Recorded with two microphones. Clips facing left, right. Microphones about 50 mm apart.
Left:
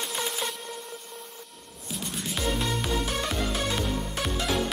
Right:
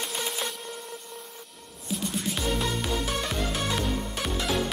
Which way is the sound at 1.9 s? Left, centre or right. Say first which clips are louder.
Right 4 dB; centre.